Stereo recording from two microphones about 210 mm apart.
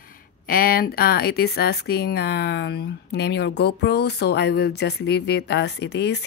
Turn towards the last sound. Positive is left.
turn(degrees=55)  # may be behind; listen again after turning